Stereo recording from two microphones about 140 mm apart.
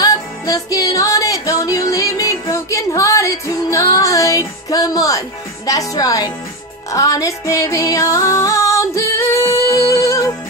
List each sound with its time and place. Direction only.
0.0 s music: 25° left (ahead or behind)
5.7 s speech: 25° left (ahead or behind)
6.9 s music: 25° left (ahead or behind)